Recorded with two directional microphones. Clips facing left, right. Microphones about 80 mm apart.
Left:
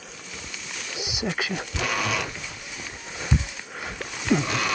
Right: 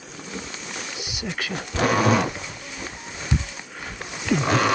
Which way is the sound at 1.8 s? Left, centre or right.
Right.